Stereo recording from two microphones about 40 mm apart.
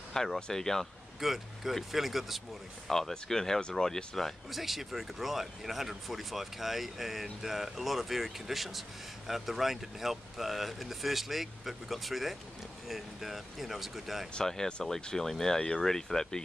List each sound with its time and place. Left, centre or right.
0.1 s speech: centre
1.2 s speech: centre
2.9 s speech: centre
4.5 s speech: centre
14.4 s speech: centre